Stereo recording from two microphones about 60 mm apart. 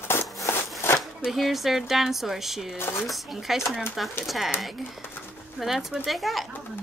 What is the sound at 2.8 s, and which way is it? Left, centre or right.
Speech, left.